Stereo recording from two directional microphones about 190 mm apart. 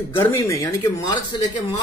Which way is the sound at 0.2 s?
15° left (ahead or behind).